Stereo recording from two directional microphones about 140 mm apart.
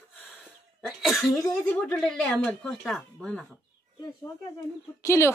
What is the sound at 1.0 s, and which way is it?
Speech, centre (ahead or behind).